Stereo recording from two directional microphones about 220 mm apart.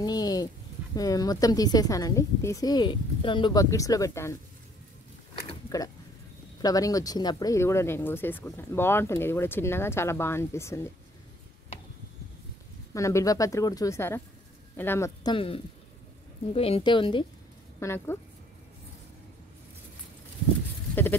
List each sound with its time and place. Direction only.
0.0 s a sound: 15° left (ahead or behind)
0.9 s speech: 15° left (ahead or behind)
6.6 s speech: 15° left (ahead or behind)
12.9 s speech: 15° left (ahead or behind)
15.3 s speech: 25° left (ahead or behind)
17.7 s speech: 10° left (ahead or behind)